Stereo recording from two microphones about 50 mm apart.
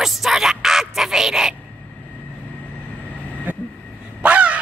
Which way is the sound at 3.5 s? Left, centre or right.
Right.